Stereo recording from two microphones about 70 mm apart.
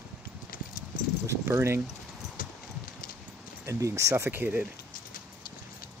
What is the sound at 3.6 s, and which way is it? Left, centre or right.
Speech, right.